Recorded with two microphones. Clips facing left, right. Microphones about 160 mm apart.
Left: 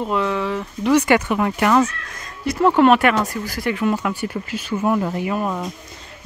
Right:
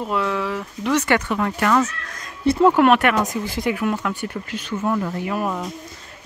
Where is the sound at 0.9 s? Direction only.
10° left (ahead or behind).